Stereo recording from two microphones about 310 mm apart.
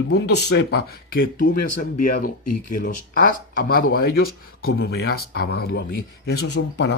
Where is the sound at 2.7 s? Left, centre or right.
Left.